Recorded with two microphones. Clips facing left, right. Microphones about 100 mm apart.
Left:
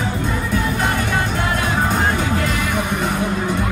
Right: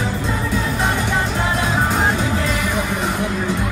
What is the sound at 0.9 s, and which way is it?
Music, 20° right (ahead or behind).